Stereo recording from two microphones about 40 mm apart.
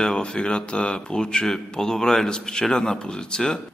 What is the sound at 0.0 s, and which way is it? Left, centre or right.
A man's voice, left.